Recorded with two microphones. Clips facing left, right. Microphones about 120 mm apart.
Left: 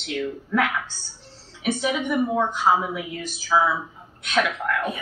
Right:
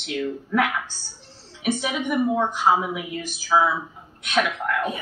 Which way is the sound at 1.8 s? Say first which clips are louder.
Left 1 dB; 15° right (ahead or behind).